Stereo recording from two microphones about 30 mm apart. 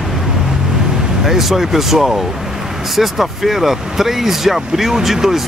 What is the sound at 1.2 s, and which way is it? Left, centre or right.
Speech, centre.